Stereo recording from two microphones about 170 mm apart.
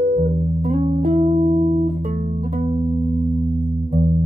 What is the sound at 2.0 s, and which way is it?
Music, 50° right (ahead or behind).